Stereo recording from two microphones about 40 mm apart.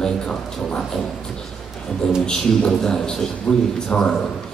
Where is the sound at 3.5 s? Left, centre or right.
Left.